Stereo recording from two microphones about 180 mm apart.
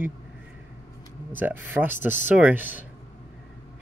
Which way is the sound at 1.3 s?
10° right (ahead or behind).